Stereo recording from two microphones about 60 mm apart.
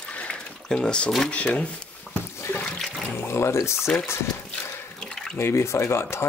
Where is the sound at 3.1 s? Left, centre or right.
Left.